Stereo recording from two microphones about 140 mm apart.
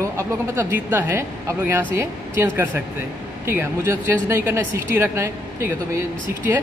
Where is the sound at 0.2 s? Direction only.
20° right (ahead or behind).